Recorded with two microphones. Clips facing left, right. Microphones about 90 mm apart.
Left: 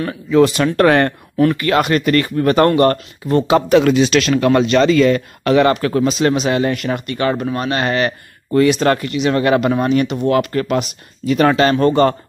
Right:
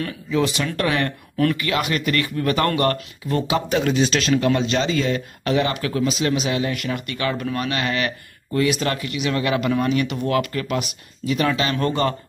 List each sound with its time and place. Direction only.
0.4 s speech: 40° left (ahead or behind)
3.7 s speech: 75° left (ahead or behind)
5.7 s speech: 40° left (ahead or behind)
10.0 s speech: 30° left (ahead or behind); by 11.7 s 50° left (ahead or behind)
11.7 s speech: 35° left (ahead or behind)